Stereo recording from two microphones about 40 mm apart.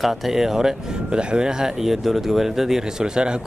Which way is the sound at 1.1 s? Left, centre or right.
Right.